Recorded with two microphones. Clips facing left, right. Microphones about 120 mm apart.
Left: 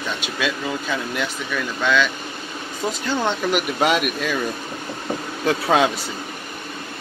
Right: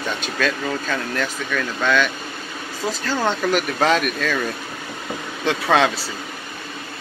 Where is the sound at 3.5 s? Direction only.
10° left (ahead or behind).